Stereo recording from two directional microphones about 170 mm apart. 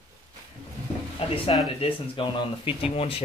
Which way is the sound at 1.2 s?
35° left (ahead or behind).